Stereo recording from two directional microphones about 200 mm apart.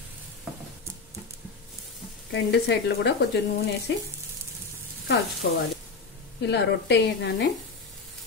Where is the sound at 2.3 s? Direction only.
55° left (ahead or behind).